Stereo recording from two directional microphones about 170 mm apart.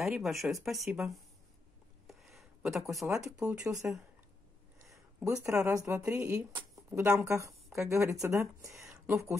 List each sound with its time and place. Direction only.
0.0 s speech: centre (ahead or behind)
2.0 s a sound: centre (ahead or behind)
3.8 s speech: 10° right (ahead or behind)
5.4 s speech: 15° right (ahead or behind)